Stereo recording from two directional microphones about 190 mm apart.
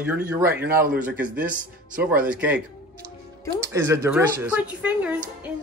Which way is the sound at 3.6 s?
15° right (ahead or behind).